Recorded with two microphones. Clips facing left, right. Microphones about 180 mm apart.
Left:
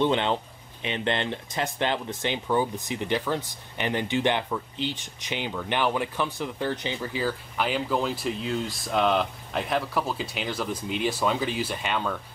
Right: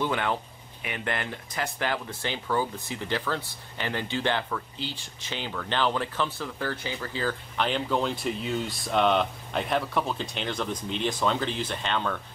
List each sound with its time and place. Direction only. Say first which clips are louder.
0.0 s speech: left 4 dB; 25° left (ahead or behind)